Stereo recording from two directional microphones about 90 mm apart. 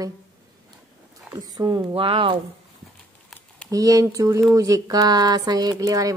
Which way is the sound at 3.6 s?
40° right (ahead or behind).